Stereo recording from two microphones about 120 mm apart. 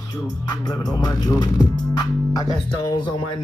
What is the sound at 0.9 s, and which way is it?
Speech, 35° left (ahead or behind).